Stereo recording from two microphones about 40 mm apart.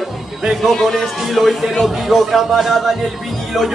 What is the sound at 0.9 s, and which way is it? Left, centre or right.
A man's voice, centre.